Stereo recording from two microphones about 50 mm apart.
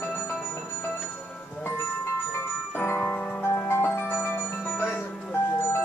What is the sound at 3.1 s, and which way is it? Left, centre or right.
Music, left.